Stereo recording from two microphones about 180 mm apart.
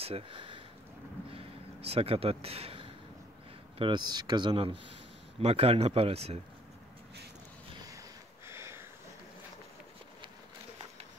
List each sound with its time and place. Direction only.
0.0 s speech: 30° right (ahead or behind)
1.9 s speech: 35° right (ahead or behind)
8.5 s a sound: 15° right (ahead or behind)